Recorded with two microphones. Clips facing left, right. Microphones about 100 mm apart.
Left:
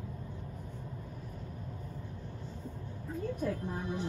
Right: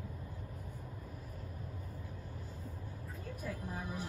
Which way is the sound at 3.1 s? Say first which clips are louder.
Left 10 dB; 5° right (ahead or behind).